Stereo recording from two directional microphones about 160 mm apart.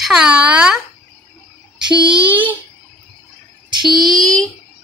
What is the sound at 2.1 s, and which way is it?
Child singing, 10° right (ahead or behind).